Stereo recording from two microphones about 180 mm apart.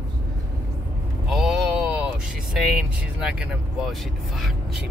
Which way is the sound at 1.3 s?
Centre (ahead or behind).